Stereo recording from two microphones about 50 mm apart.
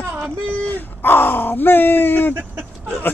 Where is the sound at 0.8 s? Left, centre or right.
Left.